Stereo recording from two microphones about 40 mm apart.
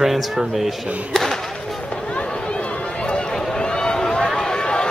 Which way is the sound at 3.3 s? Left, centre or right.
Centre.